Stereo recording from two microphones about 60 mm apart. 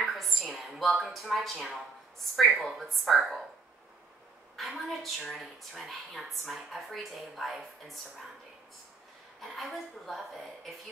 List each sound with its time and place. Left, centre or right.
0.0 s a sound: centre
2.3 s a woman's voice: centre
4.6 s a woman's voice: centre
9.4 s a woman's voice: centre